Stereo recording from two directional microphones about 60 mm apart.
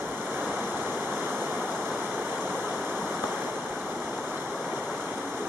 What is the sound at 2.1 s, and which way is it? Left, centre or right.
Waterfall, right.